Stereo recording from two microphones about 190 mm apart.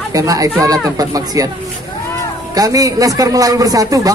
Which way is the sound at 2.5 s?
20° right (ahead or behind).